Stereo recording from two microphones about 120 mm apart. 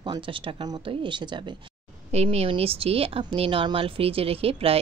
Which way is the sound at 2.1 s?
60° right (ahead or behind).